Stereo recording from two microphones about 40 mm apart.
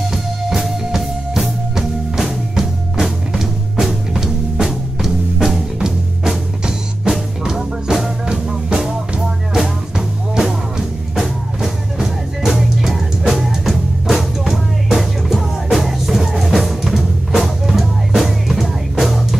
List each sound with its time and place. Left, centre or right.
0.0 s music: centre
5.8 s music: centre
7.1 s music: centre